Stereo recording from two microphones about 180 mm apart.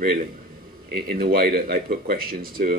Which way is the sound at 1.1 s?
55° right (ahead or behind).